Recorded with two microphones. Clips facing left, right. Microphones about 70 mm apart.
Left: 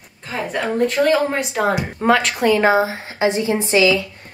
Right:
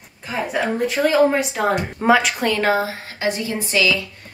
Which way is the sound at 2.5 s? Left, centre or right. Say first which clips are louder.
Left 4 dB; centre.